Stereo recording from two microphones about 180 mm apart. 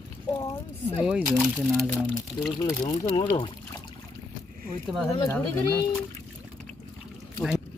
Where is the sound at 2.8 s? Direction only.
25° left (ahead or behind).